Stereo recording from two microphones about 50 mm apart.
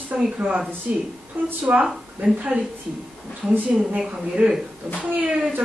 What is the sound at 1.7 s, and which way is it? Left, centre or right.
A woman's voice, right.